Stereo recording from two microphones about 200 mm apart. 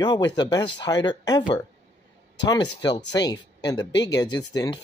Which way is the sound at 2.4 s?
20° left (ahead or behind).